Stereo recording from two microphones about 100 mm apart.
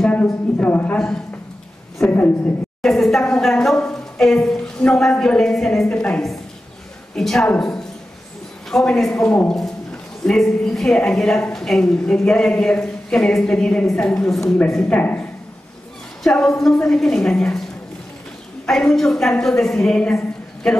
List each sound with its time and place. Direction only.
0.0 s a sound: 15° left (ahead or behind)
2.0 s a woman's voice: 20° left (ahead or behind)
2.8 s a woman's voice: 5° left (ahead or behind)
16.3 s a woman's voice: 5° left (ahead or behind)
18.7 s a woman's voice: 5° left (ahead or behind)